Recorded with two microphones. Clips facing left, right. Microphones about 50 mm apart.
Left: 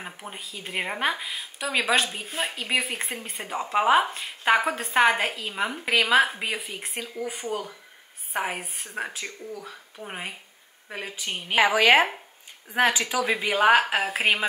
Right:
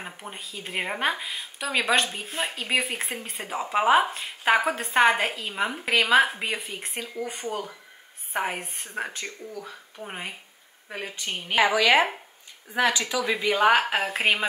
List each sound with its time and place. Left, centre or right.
0.0 s speech: centre
11.6 s speech: left
13.5 s speech: centre